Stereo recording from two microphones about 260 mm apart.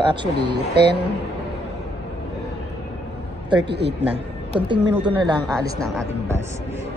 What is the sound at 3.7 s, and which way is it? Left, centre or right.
Speech, right.